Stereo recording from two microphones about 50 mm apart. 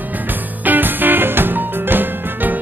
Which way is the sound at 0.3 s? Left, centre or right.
Right.